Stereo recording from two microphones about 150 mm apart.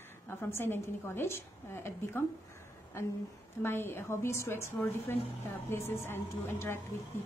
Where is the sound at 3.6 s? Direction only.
15° left (ahead or behind).